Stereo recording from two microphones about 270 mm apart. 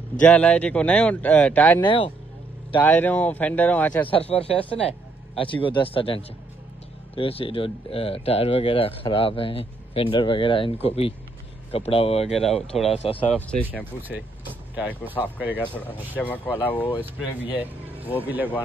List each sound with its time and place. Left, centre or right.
0.2 s speech: centre
1.9 s speech: centre
2.8 s speech: centre
4.1 s speech: left
13.2 s speech: centre
14.0 s speech: centre
15.5 s speech: centre
17.4 s speech: centre